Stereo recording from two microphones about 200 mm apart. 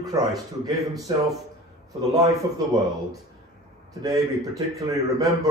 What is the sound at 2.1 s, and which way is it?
Speech, 15° right (ahead or behind).